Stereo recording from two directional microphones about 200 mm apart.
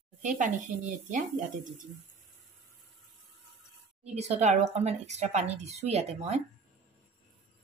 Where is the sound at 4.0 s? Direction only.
35° right (ahead or behind).